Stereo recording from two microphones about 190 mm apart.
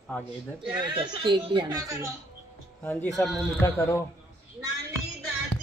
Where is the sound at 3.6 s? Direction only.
15° left (ahead or behind).